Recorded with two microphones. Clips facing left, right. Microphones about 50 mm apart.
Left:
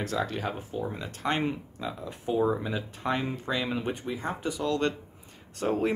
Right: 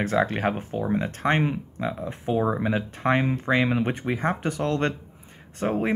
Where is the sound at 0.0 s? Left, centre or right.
Right.